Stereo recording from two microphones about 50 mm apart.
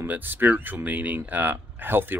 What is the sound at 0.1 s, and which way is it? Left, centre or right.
Speech, right.